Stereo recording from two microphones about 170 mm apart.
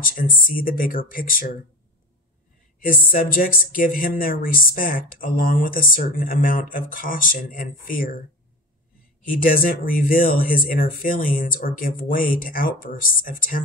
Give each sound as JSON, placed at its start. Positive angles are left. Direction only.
{"t": 0.0, "sound": "speech", "side_deg": 55}
{"t": 2.8, "sound": "speech", "side_deg": 55}
{"t": 9.4, "sound": "speech", "side_deg": 55}